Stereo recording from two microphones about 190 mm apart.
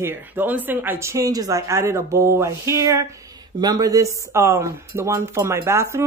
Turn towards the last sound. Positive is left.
turn(degrees=-15)  # may be behind; listen again after turning